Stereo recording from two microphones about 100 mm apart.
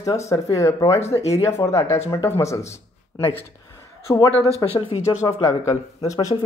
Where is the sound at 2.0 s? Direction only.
80° left.